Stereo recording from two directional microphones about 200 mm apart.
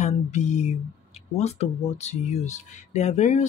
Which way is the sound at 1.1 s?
30° left (ahead or behind).